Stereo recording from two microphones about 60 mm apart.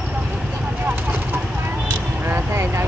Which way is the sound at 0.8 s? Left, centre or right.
Right.